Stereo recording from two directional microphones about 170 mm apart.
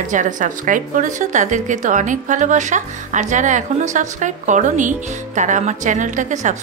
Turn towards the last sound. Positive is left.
turn(degrees=-45)  # may be behind; listen again after turning